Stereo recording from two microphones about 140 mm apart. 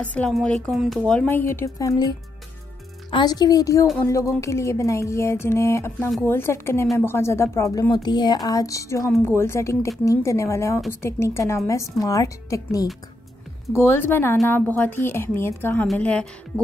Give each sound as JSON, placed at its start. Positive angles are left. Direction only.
{"t": 0.0, "sound": "a woman's voice", "side_deg": 10}